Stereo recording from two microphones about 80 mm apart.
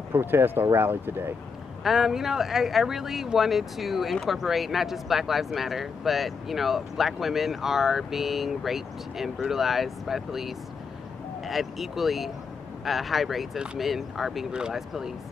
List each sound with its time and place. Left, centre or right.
0.1 s speech: right
1.8 s speech: centre